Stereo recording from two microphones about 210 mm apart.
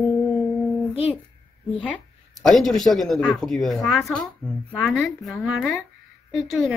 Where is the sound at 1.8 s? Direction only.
5° left (ahead or behind).